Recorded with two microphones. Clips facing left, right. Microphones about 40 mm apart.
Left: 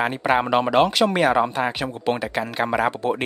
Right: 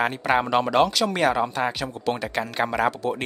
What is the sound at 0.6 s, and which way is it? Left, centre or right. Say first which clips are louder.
A man's voice: left 3 dB; left.